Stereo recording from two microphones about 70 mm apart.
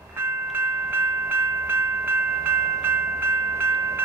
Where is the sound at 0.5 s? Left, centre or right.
Right.